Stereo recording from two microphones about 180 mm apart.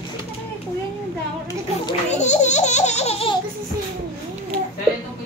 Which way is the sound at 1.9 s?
40° left (ahead or behind).